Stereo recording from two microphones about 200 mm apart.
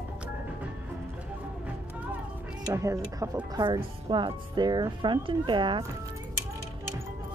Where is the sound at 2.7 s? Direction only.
15° right (ahead or behind).